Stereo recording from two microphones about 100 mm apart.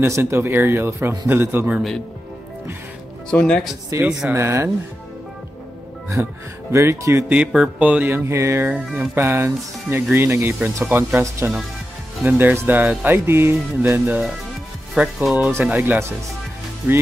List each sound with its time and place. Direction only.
0.0 s speech: 25° right (ahead or behind)
3.3 s speech: 10° left (ahead or behind)
3.9 s speech: 30° right (ahead or behind)
6.2 s speech: 20° right (ahead or behind)
7.3 s speech: 10° right (ahead or behind); by 8.6 s 30° right (ahead or behind)
8.6 s speech: 10° right (ahead or behind)
9.1 s speech: 25° right (ahead or behind)